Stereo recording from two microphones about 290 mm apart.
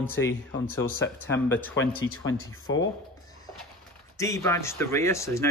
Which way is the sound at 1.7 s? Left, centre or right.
Left.